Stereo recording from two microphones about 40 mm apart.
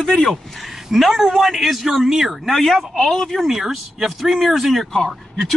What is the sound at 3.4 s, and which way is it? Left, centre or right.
Speech, centre.